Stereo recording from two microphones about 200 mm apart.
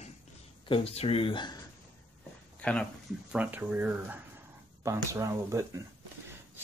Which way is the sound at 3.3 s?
5° right (ahead or behind).